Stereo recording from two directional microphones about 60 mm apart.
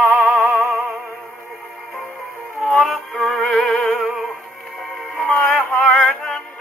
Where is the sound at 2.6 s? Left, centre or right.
Centre.